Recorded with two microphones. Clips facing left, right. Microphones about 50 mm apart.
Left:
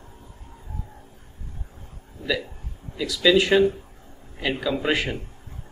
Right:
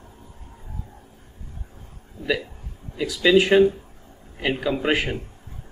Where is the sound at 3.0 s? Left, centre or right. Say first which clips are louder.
Right 1 dB; centre.